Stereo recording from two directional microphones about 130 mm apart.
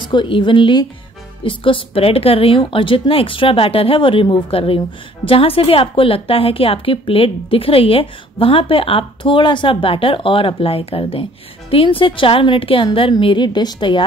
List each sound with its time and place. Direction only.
0.0 s a woman's voice: 35° left (ahead or behind)